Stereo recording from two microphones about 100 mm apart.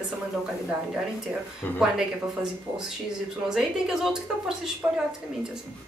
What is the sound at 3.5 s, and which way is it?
Speech, 5° right (ahead or behind).